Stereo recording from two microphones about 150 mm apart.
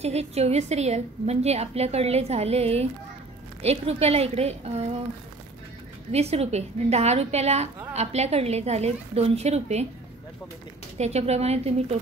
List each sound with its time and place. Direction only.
0.0 s a woman's voice: 45° right (ahead or behind)
6.1 s a woman's voice: 45° right (ahead or behind)
11.0 s a woman's voice: 45° right (ahead or behind)